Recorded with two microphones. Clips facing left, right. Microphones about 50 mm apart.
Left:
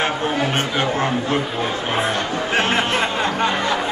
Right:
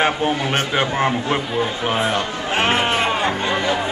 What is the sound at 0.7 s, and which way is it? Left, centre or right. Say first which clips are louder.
Speech: right 2 dB; right.